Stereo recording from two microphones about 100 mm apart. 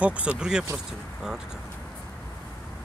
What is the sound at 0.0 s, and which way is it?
Speech, 10° right (ahead or behind).